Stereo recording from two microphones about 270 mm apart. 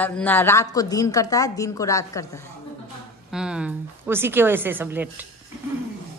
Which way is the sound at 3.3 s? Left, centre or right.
Centre.